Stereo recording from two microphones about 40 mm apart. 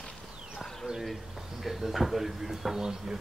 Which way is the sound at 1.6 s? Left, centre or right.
Centre.